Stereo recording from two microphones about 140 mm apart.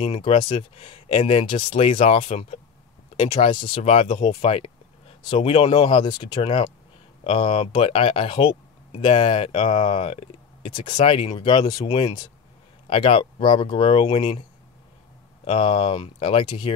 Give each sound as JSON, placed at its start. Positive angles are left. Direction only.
{"t": 0.0, "sound": "speech", "side_deg": 40}
{"t": 15.4, "sound": "speech", "side_deg": 40}